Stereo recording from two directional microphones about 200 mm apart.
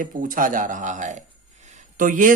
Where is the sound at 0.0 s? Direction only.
45° right (ahead or behind).